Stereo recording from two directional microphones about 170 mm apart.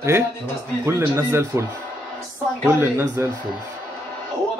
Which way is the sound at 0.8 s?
15° right (ahead or behind).